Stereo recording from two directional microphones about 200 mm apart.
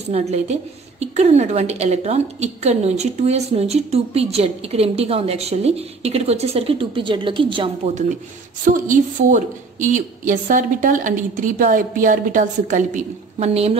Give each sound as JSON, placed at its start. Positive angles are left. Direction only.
{"t": 0.1, "sound": "a woman's voice", "side_deg": -35}